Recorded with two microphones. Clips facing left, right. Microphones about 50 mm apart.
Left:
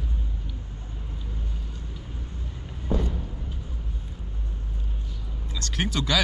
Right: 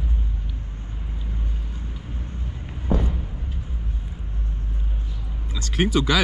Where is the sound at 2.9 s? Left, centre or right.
Centre.